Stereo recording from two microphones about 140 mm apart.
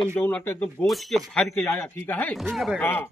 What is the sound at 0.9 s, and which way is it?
Speech, centre (ahead or behind).